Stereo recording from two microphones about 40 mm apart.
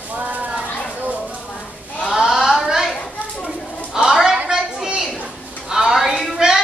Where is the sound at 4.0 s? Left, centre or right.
Centre.